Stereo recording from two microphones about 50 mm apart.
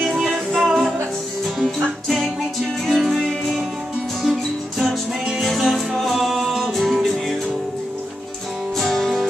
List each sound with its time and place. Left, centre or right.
0.1 s music: centre
2.0 s music: centre
8.7 s music: centre